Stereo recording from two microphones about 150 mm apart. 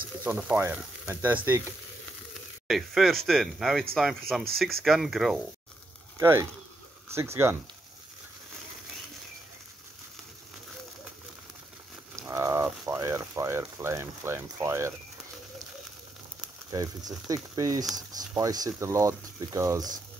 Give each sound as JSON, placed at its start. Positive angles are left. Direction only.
{"t": 0.2, "sound": "speech", "side_deg": -10}
{"t": 2.7, "sound": "speech", "side_deg": 0}
{"t": 6.1, "sound": "speech", "side_deg": -15}
{"t": 12.2, "sound": "a sound", "side_deg": -20}
{"t": 12.8, "sound": "speech", "side_deg": -20}
{"t": 16.7, "sound": "speech", "side_deg": -20}